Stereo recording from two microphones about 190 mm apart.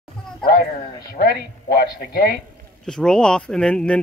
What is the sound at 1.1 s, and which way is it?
Speech, 55° left (ahead or behind).